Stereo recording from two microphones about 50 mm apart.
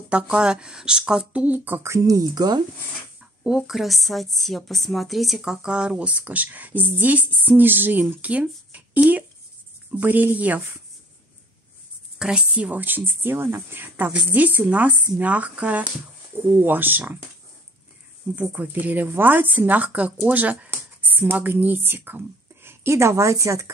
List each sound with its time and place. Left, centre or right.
0.1 s speech: right
1.6 s speech: right
3.4 s a woman's voice: centre; by 10.6 s right
12.2 s a woman's voice: centre
12.7 s a woman's voice: right
18.4 s a woman's voice: right
20.7 s a sound: right
21.4 s a woman's voice: right